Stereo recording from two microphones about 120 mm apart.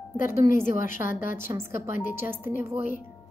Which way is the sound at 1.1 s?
90° left.